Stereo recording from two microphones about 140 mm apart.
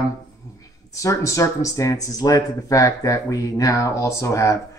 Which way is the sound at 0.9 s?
20° left (ahead or behind).